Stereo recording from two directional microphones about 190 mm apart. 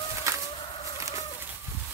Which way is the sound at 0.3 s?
15° right (ahead or behind).